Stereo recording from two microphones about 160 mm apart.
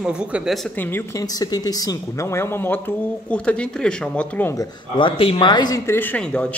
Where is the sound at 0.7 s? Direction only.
15° left (ahead or behind).